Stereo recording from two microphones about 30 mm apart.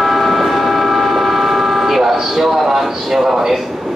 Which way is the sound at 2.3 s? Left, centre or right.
Centre.